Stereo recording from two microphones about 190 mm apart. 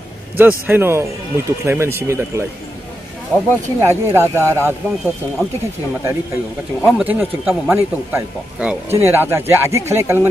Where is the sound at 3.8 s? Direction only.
15° right (ahead or behind).